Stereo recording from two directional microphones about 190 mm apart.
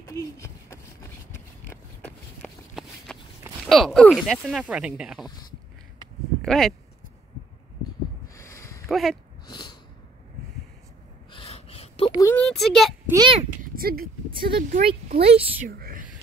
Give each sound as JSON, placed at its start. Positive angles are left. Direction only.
{"t": 0.1, "sound": "speech", "side_deg": 15}
{"t": 1.7, "sound": "a sound", "side_deg": 10}
{"t": 2.8, "sound": "walk", "side_deg": 0}
{"t": 3.6, "sound": "speech", "side_deg": 0}
{"t": 6.4, "sound": "speech", "side_deg": 0}
{"t": 8.4, "sound": "a sound", "side_deg": 15}
{"t": 8.8, "sound": "speech", "side_deg": 0}
{"t": 9.5, "sound": "a sound", "side_deg": 20}
{"t": 11.3, "sound": "gasp", "side_deg": 30}
{"t": 12.2, "sound": "a child's voice", "side_deg": 15}
{"t": 12.4, "sound": "speech", "side_deg": 0}
{"t": 13.0, "sound": "a child's voice", "side_deg": -15}
{"t": 13.7, "sound": "speech", "side_deg": -50}
{"t": 15.7, "sound": "whispering", "side_deg": -50}